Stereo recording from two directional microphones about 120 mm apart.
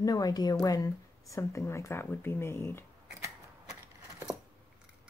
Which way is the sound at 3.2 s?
25° right (ahead or behind).